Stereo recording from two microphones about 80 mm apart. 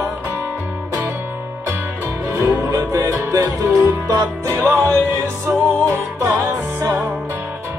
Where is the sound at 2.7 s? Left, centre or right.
Right.